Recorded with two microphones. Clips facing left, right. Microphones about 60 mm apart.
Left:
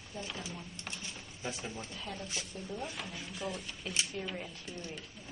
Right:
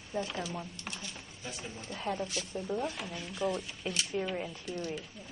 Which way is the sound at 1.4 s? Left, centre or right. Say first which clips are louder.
Left 3 dB; left.